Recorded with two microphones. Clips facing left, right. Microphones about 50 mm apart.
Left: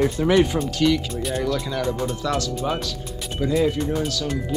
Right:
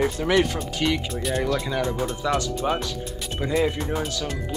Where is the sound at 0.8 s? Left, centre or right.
Centre.